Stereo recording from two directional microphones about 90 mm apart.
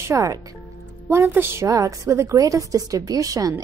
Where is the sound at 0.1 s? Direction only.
35° right (ahead or behind).